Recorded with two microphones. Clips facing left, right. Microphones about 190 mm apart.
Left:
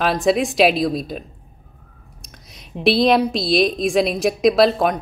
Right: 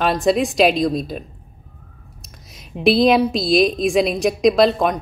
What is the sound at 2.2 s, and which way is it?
A woman's voice, centre (ahead or behind).